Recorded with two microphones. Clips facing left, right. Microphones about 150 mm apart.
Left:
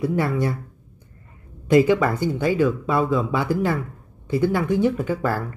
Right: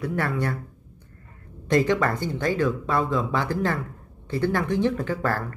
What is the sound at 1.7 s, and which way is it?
Speech, 10° left (ahead or behind).